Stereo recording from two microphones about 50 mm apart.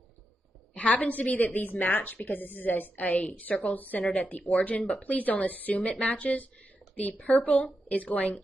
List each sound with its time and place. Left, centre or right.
0.7 s a woman's voice: left